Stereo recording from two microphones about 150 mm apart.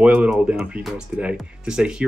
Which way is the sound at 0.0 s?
5° right (ahead or behind).